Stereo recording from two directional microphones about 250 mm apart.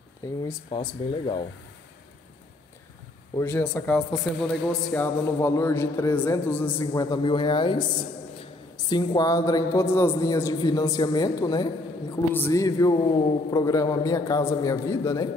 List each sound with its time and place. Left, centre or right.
0.4 s speech: centre
3.3 s a woman's voice: centre
8.8 s a woman's voice: centre